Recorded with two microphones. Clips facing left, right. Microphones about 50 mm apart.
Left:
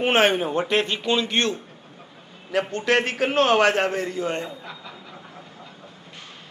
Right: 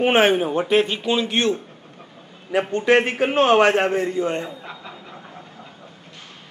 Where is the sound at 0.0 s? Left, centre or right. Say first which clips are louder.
Right 3 dB; centre.